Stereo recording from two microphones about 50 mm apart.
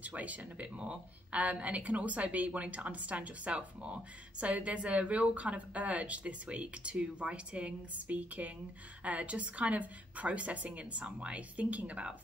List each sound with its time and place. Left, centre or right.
0.0 s a woman's voice: right